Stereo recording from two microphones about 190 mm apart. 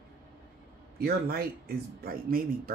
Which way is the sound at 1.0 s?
55° right (ahead or behind).